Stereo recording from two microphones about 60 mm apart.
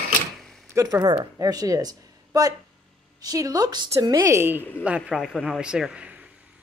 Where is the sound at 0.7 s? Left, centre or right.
Right.